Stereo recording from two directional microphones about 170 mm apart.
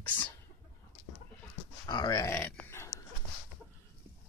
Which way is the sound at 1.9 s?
20° left (ahead or behind).